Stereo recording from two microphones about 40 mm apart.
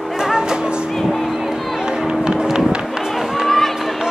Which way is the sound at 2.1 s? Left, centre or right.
Centre.